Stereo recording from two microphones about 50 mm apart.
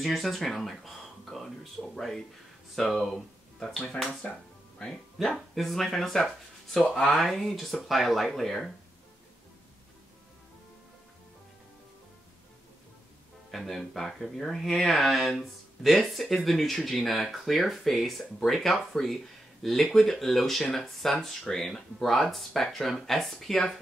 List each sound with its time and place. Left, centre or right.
0.0 s speech: centre
5.2 s speech: centre
13.5 s speech: centre